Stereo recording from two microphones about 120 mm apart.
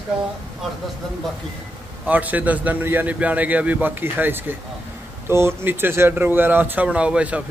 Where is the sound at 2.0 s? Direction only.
15° right (ahead or behind).